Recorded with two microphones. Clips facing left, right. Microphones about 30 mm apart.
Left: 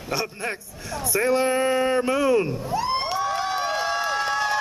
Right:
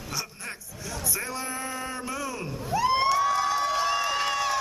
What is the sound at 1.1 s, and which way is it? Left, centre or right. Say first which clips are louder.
Speech: left 15 dB; left.